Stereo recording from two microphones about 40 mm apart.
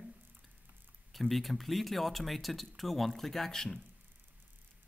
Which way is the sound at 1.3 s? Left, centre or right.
Centre.